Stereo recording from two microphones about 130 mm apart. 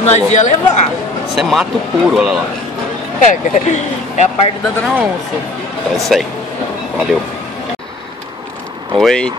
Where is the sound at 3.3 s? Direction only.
70° left (ahead or behind).